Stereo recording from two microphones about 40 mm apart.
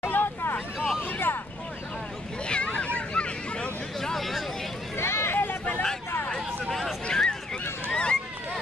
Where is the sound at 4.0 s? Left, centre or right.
Centre.